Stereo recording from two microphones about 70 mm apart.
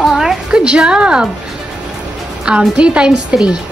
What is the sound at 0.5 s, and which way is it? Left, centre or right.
Speech, centre.